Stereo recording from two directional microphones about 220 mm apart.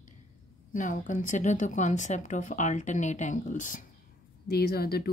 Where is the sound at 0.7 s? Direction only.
35° left (ahead or behind).